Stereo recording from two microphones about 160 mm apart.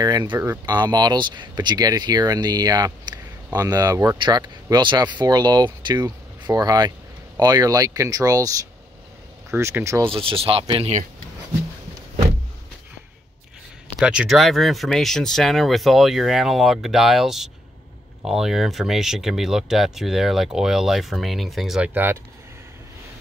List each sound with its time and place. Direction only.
0.0 s speech: 25° right (ahead or behind)
0.7 s speech: 25° right (ahead or behind)
10.0 s speech: 35° right (ahead or behind)
13.9 s speech: 5° right (ahead or behind)